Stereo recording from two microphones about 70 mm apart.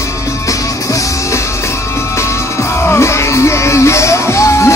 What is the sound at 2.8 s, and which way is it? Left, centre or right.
Music, left.